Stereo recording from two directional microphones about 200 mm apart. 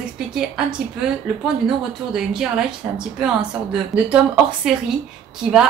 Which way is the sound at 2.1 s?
5° right (ahead or behind).